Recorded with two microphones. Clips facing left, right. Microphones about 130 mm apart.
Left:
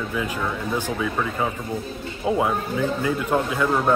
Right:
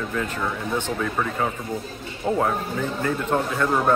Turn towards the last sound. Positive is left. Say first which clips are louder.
# even
turn(degrees=5)  # may be behind; listen again after turning